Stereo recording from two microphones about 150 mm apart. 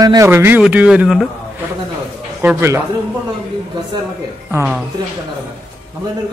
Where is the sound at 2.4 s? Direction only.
15° right (ahead or behind).